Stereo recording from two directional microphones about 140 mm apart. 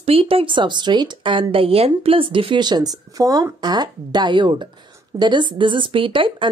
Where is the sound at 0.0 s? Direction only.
40° right (ahead or behind).